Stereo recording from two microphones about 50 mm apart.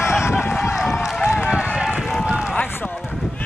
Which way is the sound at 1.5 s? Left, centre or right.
Right.